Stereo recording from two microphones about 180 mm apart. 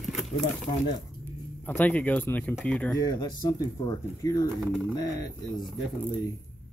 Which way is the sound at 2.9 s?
20° left (ahead or behind).